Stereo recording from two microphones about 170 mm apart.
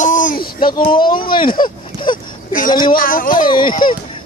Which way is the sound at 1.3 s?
30° left (ahead or behind).